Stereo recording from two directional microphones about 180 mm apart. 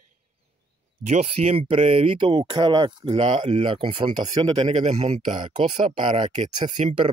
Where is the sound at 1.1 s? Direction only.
35° right (ahead or behind).